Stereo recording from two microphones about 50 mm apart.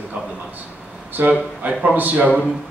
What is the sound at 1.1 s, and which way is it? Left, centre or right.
A man's voice, right.